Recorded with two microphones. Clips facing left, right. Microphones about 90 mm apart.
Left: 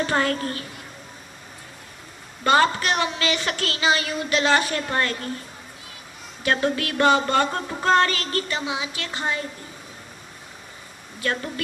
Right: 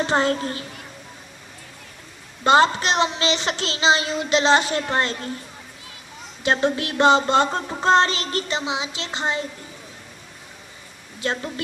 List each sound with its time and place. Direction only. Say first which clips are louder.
0.0 s music: right 2 dB; 25° right (ahead or behind)
2.4 s music: right 2 dB; 20° right (ahead or behind)
6.4 s music: right 2 dB; 25° right (ahead or behind)
11.1 s music: even; 25° right (ahead or behind)